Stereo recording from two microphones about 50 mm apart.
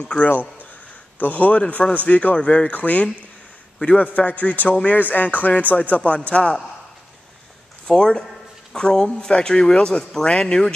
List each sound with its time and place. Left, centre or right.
0.0 s a man's voice: left
7.8 s speech: centre